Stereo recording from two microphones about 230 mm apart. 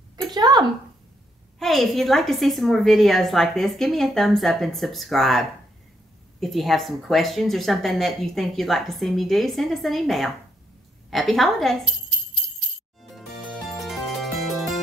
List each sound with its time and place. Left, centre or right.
0.3 s a sound: centre
1.6 s speech: centre
6.4 s speech: centre
13.1 s music: centre